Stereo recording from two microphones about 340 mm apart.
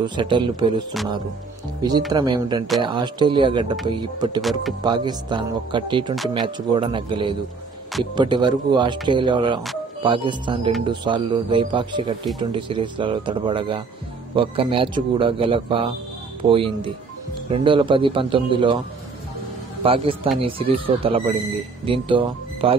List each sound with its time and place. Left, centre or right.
0.0 s speech: centre
4.4 s speech: centre
4.8 s speech: centre
19.8 s speech: centre